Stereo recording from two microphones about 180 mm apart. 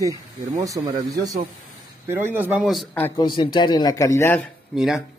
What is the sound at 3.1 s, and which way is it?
A man's voice, 25° left (ahead or behind).